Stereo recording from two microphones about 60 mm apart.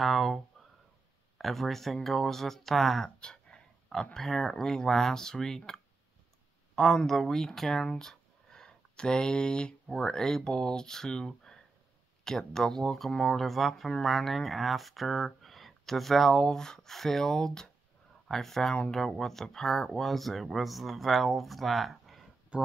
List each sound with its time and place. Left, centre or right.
0.0 s speech: centre
1.4 s speech: centre
3.2 s speech: centre
22.5 s speech: centre